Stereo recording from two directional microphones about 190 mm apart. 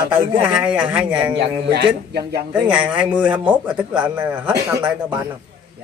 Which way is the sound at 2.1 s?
60° right (ahead or behind).